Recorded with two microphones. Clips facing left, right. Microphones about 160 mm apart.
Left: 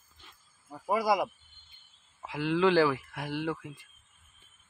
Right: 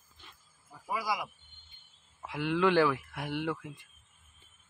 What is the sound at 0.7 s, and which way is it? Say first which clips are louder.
Speech: left 7 dB; 50° left (ahead or behind).